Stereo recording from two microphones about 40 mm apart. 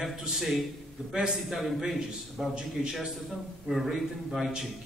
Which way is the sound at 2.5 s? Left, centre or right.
Centre.